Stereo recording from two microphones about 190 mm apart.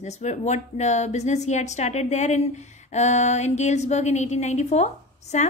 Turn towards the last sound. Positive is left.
turn(degrees=35)  # may be behind; listen again after turning